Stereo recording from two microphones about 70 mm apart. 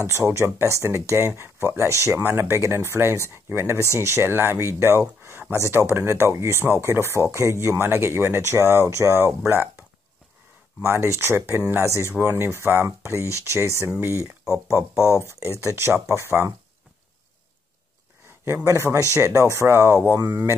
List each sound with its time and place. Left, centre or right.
0.0 s speech: right
15.0 s speech: left
15.2 s speech: right
18.7 s speech: right